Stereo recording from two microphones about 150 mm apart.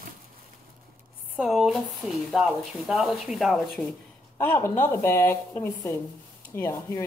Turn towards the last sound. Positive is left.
turn(degrees=20)  # may be behind; listen again after turning